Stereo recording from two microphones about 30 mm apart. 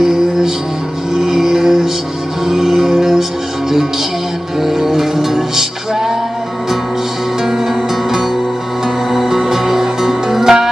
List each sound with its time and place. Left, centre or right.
0.0 s music: centre
4.6 s music: centre
7.4 s music: centre